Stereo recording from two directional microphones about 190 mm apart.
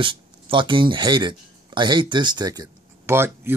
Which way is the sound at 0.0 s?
25° right (ahead or behind).